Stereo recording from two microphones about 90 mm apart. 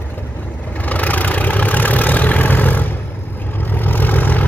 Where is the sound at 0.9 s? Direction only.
20° left (ahead or behind).